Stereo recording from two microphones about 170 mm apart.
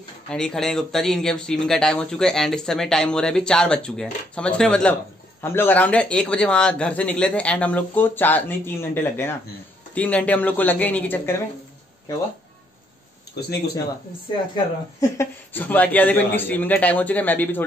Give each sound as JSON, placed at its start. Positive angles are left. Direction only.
{"t": 0.3, "sound": "a man's voice", "side_deg": 5}
{"t": 14.5, "sound": "a man's voice", "side_deg": 20}